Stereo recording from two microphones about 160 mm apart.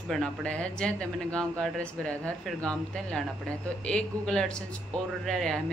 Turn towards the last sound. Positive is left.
turn(degrees=0)  # may be behind; listen again after turning